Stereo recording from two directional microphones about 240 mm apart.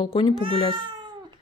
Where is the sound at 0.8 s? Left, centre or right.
Centre.